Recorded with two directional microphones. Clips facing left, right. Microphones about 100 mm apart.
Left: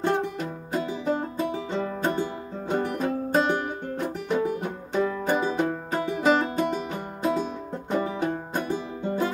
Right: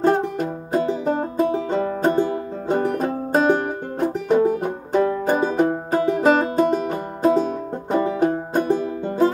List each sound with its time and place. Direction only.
0.0 s music: 40° right (ahead or behind)